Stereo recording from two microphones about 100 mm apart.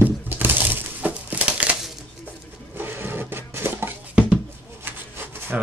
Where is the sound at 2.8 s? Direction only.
20° right (ahead or behind).